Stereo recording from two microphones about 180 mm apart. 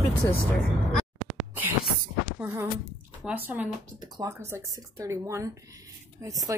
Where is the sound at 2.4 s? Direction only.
10° right (ahead or behind).